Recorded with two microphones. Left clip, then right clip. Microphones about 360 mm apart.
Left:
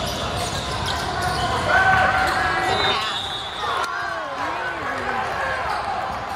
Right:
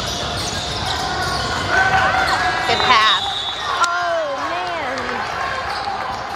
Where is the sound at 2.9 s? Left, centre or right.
Centre.